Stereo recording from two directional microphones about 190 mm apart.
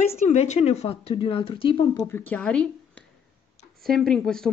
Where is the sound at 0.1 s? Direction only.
35° left (ahead or behind).